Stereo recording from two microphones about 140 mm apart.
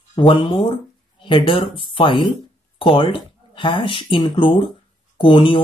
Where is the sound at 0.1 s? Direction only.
40° left (ahead or behind).